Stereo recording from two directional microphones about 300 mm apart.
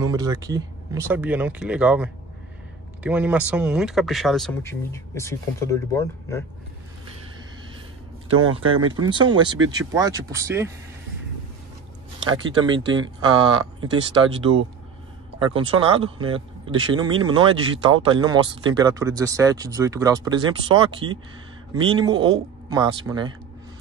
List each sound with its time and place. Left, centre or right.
0.0 s speech: centre
8.4 s speech: right
9.1 s speech: centre
12.3 s speech: centre
13.3 s speech: right
14.3 s speech: centre